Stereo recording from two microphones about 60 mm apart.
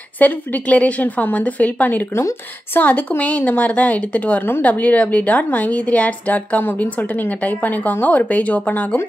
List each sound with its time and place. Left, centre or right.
0.2 s speech: left